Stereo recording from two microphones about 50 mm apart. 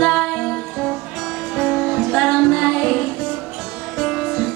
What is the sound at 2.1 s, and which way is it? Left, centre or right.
Music, centre.